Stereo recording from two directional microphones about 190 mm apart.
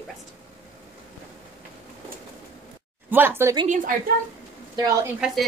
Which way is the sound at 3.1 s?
10° right (ahead or behind).